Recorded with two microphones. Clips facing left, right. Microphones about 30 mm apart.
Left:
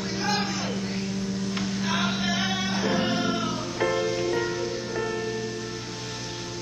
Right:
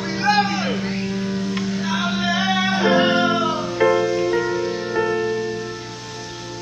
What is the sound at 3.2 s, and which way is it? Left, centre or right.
Music, centre.